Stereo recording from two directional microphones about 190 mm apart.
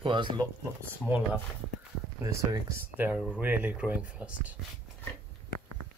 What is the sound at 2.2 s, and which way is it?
Speech, 15° right (ahead or behind).